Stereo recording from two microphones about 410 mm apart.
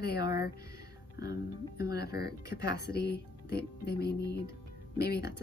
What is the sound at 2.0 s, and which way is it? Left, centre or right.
Speech, left.